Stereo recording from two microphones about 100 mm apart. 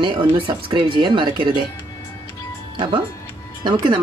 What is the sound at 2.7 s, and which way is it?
Speech, 60° right (ahead or behind).